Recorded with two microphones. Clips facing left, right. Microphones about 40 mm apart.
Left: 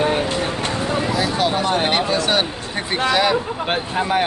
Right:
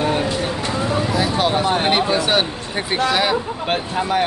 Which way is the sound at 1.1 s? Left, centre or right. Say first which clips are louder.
Right 2 dB; centre.